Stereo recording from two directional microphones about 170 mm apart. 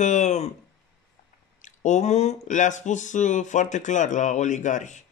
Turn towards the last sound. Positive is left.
turn(degrees=45)  # may be behind; listen again after turning